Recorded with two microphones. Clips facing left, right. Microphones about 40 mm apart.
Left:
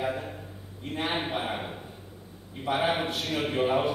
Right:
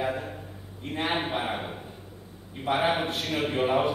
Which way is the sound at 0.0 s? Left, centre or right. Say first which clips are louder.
Right 1 dB; centre.